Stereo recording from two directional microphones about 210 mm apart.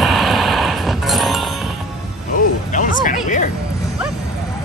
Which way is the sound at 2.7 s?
40° left (ahead or behind).